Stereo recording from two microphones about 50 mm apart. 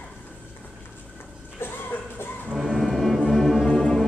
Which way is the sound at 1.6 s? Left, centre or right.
Left.